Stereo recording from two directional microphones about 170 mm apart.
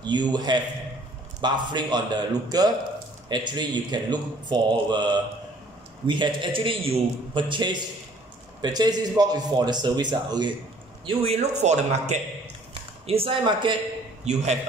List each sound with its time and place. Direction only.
0.0 s speech: 25° right (ahead or behind)
11.1 s a man's voice: 35° right (ahead or behind)
14.2 s a man's voice: 40° right (ahead or behind)